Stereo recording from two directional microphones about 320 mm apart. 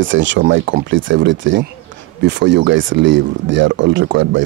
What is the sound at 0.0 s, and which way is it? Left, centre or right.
Speech, right.